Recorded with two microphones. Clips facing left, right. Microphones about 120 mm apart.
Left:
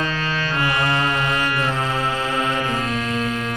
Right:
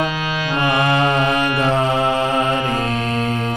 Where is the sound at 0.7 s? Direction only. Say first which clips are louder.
Right 6 dB; 20° right (ahead or behind).